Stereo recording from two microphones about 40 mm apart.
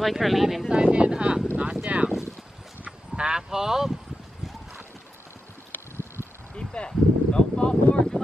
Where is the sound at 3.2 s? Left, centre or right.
Right.